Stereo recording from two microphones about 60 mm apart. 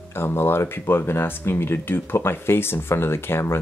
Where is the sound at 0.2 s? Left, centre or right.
Left.